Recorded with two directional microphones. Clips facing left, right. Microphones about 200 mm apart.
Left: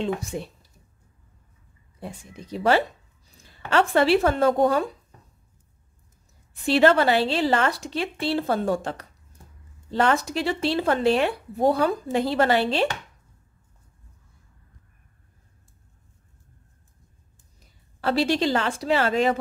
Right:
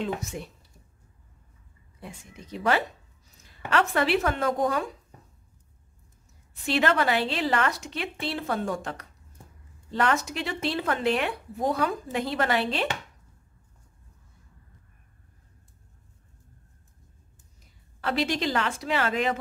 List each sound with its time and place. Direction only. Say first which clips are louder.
0.0 s speech: left 4 dB; 30° left (ahead or behind)
2.0 s speech: left 5 dB; 35° left (ahead or behind)
6.6 s speech: left 6 dB; 35° left (ahead or behind)
18.0 s speech: left 5 dB; 35° left (ahead or behind)